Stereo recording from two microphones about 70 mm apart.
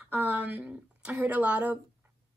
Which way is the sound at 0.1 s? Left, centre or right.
Right.